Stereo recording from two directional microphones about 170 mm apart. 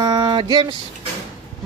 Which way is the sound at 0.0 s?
25° right (ahead or behind).